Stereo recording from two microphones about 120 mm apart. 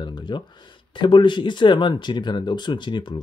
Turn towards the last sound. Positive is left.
turn(degrees=40)  # may be behind; listen again after turning